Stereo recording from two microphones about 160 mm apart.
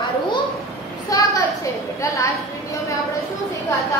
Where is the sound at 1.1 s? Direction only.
20° left (ahead or behind).